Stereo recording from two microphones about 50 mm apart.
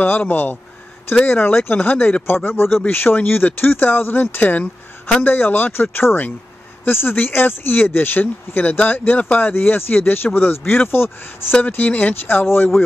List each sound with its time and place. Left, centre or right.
0.2 s speech: left
11.6 s speech: left